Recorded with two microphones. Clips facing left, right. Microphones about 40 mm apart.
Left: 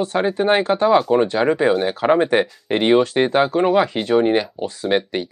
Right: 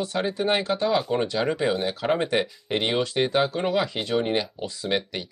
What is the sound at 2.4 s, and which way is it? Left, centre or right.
Speech, left.